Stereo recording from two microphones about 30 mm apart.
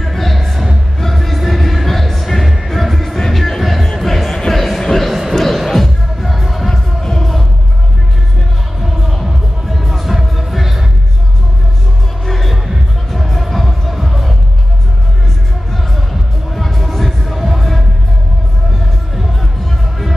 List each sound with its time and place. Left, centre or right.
0.0 s music: centre
4.8 s a sound: centre
5.3 s music: centre
6.7 s music: centre
8.8 s music: centre
12.3 s music: centre
15.7 s music: centre
17.2 s music: centre
19.1 s music: centre